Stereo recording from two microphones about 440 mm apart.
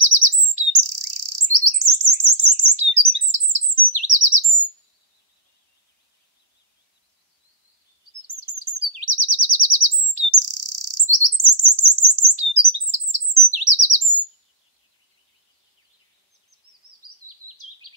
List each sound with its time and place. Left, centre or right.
0.0 s chirp: right
8.3 s chirp: right